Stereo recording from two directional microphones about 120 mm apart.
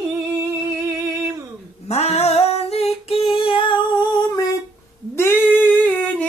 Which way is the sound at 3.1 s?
50° left (ahead or behind).